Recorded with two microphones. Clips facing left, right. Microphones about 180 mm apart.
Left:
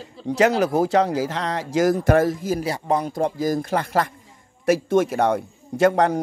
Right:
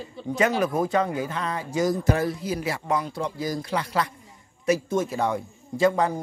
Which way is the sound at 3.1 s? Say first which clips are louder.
Left 7 dB; 45° left (ahead or behind).